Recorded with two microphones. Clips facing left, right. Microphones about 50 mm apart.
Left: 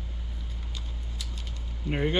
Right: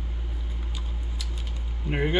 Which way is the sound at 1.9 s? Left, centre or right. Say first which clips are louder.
Right 2 dB; right.